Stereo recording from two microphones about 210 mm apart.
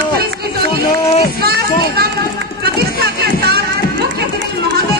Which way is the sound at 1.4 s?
50° right (ahead or behind).